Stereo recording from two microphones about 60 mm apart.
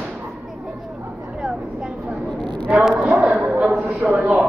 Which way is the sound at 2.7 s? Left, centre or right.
Centre.